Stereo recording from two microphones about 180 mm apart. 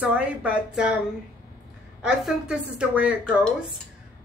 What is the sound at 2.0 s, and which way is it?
A woman's voice, 5° right (ahead or behind).